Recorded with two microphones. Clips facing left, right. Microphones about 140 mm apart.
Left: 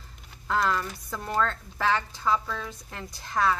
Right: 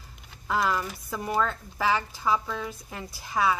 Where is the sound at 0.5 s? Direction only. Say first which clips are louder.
Even; 10° right (ahead or behind).